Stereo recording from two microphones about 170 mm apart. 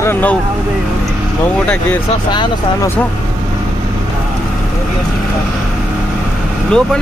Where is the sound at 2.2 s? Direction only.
25° left (ahead or behind).